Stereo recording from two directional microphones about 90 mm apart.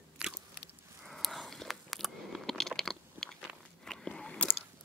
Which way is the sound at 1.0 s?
Centre (ahead or behind).